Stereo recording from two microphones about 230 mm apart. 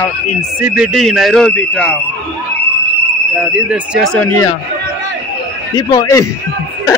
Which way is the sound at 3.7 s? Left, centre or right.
Centre.